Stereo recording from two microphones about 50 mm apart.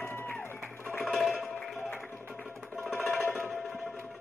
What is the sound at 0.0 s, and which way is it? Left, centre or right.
Music, left.